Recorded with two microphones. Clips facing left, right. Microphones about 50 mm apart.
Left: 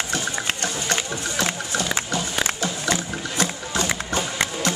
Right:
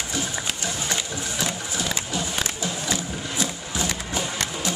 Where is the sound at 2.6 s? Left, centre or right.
Left.